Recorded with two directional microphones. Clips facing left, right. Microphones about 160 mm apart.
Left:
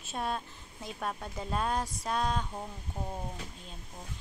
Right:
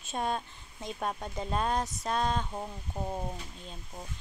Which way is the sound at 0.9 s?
15° right (ahead or behind).